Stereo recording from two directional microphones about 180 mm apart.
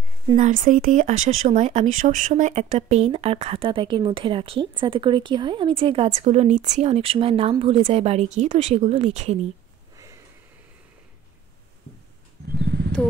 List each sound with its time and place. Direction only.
0.4 s speech: 45° right (ahead or behind)